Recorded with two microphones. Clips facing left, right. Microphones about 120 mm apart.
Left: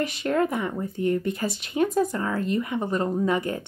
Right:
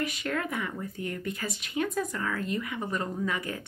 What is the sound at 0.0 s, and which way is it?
Speech, 30° left (ahead or behind).